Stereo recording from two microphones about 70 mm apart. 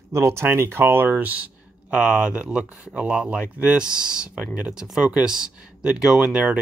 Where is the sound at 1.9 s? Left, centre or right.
Centre.